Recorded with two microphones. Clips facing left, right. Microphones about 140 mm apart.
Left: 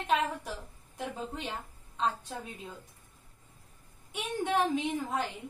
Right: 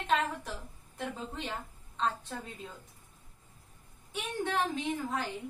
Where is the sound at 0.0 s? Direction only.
10° left (ahead or behind).